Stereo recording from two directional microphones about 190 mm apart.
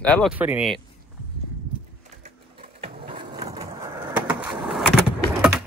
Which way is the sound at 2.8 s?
25° right (ahead or behind).